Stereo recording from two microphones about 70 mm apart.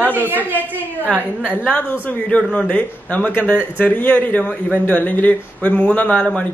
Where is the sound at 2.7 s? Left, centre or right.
Left.